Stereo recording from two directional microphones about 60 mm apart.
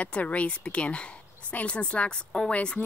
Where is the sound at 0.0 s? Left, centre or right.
Left.